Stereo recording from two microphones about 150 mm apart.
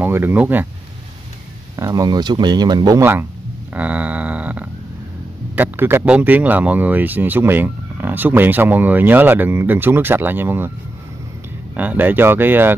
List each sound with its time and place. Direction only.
0.0 s speech: 15° right (ahead or behind)
1.8 s speech: 25° right (ahead or behind)
3.0 s speech: 15° right (ahead or behind)
3.7 s a sound: 10° right (ahead or behind)
5.6 s speech: 15° right (ahead or behind)
11.7 s speech: 10° right (ahead or behind)